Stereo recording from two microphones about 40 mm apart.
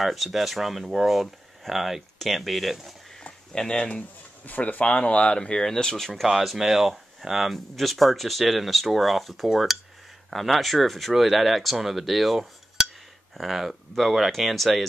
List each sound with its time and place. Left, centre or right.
0.0 s speech: centre
3.5 s speech: left
4.5 s speech: left; by 6.2 s centre
6.2 s speech: centre